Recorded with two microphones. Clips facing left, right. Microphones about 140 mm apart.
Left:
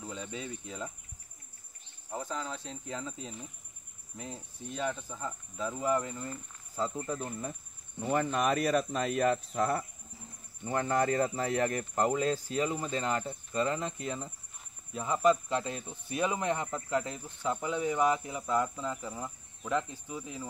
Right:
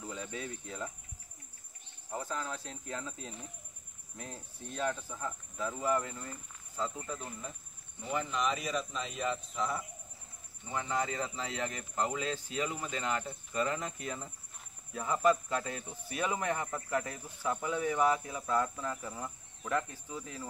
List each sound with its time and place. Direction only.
0.1 s speech: 20° left (ahead or behind)
2.0 s speech: 15° left (ahead or behind)
6.8 s speech: 35° left (ahead or behind)
8.0 s speech: 55° left (ahead or behind); by 20.4 s 15° left (ahead or behind)